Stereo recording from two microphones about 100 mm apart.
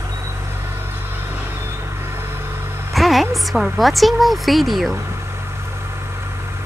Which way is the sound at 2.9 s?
Centre (ahead or behind).